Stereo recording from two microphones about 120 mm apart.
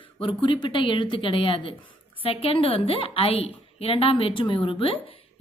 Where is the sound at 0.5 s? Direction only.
45° left (ahead or behind).